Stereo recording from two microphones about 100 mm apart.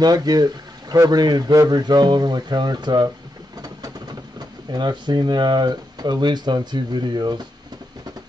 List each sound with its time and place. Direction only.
0.0 s a man's voice: 40° right (ahead or behind)
3.6 s vehicle: 40° right (ahead or behind)
4.6 s a man's voice: 45° right (ahead or behind)